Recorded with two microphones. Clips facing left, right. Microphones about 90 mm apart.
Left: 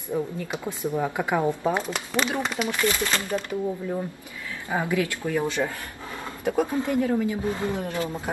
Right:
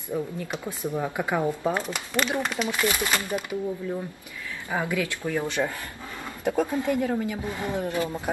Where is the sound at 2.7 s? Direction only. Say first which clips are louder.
Left 1 dB; 10° right (ahead or behind).